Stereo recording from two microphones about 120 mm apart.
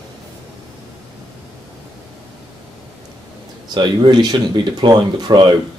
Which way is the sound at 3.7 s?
40° right (ahead or behind).